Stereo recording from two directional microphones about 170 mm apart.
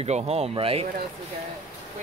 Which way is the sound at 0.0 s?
35° right (ahead or behind).